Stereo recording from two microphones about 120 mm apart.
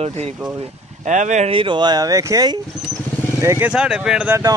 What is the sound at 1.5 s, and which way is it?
Speech, 45° right (ahead or behind).